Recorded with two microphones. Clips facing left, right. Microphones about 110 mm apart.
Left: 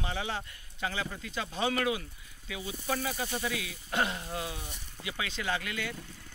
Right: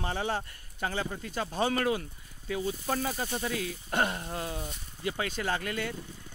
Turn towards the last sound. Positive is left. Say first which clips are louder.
# right 2 dB
turn(degrees=-40)  # may be behind; listen again after turning